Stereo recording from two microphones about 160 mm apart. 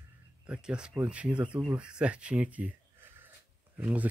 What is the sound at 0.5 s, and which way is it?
Speech, 5° right (ahead or behind).